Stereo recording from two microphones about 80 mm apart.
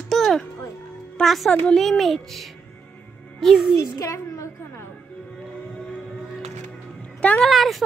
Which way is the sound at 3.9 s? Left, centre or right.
Left.